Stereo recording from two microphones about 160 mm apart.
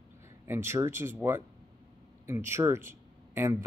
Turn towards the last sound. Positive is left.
turn(degrees=-15)  # may be behind; listen again after turning